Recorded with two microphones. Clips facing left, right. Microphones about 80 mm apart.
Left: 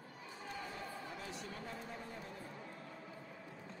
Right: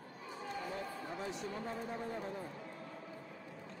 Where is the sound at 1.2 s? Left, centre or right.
Right.